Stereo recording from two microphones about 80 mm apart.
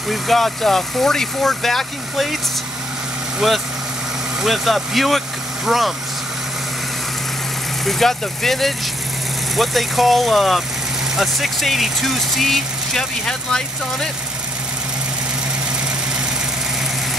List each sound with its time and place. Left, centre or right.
0.1 s speech: centre
3.3 s speech: centre
7.8 s speech: centre